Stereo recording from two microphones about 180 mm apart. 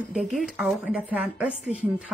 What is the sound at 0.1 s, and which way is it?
A woman's voice, centre (ahead or behind).